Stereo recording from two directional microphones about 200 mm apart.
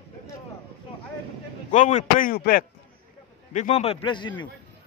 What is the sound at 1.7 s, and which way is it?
Speech, 40° left (ahead or behind).